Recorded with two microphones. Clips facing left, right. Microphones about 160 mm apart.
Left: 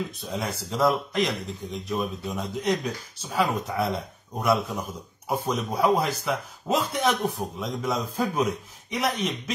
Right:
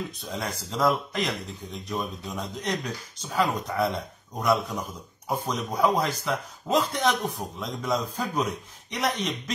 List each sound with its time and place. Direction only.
0.2 s a man's voice: 5° left (ahead or behind)